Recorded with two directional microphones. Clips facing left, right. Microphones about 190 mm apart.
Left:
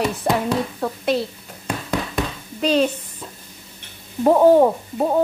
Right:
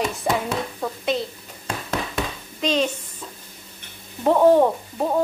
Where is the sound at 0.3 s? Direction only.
Centre (ahead or behind).